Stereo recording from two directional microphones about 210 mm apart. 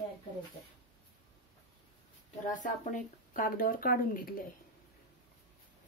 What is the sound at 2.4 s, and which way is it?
Speech, 40° left (ahead or behind).